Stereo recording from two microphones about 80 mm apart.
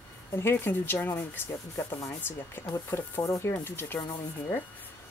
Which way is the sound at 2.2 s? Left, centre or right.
Left.